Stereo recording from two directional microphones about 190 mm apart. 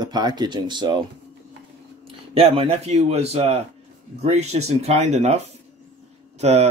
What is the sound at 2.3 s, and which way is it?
Speech, 30° right (ahead or behind).